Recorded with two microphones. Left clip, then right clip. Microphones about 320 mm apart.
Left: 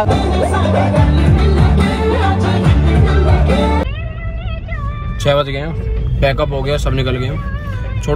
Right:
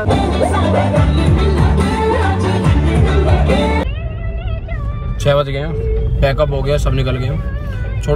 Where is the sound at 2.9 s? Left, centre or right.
Centre.